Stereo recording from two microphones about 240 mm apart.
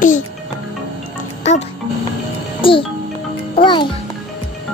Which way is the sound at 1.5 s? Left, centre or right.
Left.